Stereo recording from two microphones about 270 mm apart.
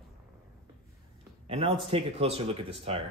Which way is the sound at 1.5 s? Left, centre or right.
Right.